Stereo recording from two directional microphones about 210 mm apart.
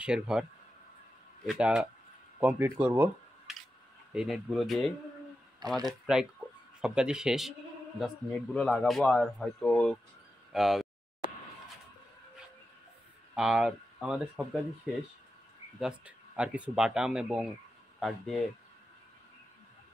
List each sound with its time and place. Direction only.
0.0 s a man's voice: 5° right (ahead or behind)
6.1 s a man's voice: centre (ahead or behind)
13.3 s speech: 5° right (ahead or behind)
16.3 s a man's voice: 5° right (ahead or behind)